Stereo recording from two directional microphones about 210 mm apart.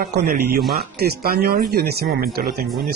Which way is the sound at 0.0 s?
45° right (ahead or behind).